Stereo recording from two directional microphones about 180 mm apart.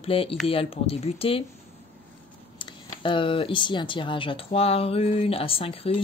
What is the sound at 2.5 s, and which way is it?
Speech, 25° left (ahead or behind).